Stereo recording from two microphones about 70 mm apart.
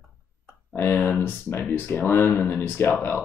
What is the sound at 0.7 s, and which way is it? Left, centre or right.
Speech, left.